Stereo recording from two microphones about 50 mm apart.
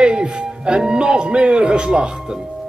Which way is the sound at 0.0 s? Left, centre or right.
Centre.